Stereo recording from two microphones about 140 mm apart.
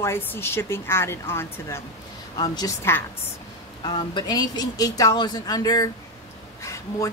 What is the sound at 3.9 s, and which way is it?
Speech, 30° left (ahead or behind).